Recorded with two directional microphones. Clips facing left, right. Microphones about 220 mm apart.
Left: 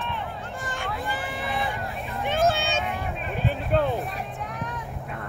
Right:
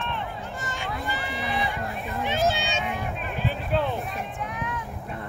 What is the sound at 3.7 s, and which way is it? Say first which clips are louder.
Music: left 3 dB; 50° left (ahead or behind).